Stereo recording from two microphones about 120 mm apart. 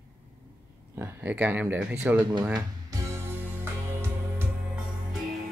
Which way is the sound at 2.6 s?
30° right (ahead or behind).